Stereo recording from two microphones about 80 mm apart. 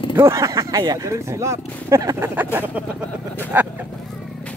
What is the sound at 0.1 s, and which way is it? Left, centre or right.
Speech, right.